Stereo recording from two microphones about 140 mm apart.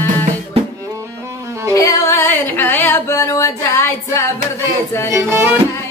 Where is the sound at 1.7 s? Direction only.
20° left (ahead or behind).